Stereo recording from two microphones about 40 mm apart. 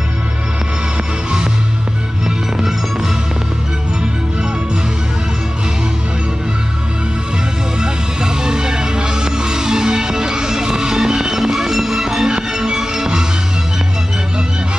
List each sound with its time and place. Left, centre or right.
2.2 s music: centre
7.8 s music: centre